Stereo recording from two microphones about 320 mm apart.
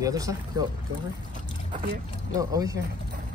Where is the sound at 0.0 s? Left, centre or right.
Centre.